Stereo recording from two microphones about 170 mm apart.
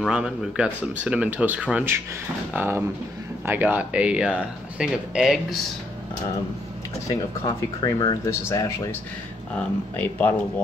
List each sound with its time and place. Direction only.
0.0 s speech: 5° right (ahead or behind)
7.1 s speech: 20° left (ahead or behind)